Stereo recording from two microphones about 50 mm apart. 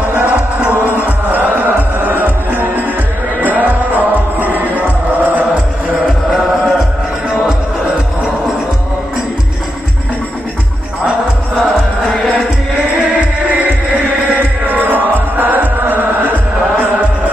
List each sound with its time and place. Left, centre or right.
0.0 s music: right
11.5 s music: centre
13.6 s music: right